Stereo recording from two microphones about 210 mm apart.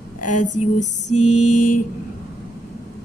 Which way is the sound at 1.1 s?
90° left.